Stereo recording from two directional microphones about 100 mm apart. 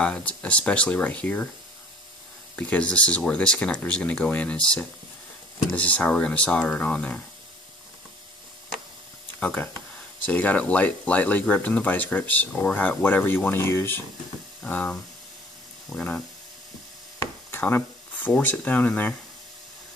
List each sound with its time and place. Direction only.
0.0 s speech: 10° left (ahead or behind)
2.5 s speech: 15° left (ahead or behind)
9.4 s speech: 15° left (ahead or behind)
14.6 s speech: 10° left (ahead or behind)
17.2 s a sound: 20° left (ahead or behind)
18.3 s speech: 15° left (ahead or behind)